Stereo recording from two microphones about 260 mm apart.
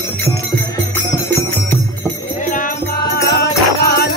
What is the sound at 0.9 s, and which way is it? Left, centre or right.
Music, centre.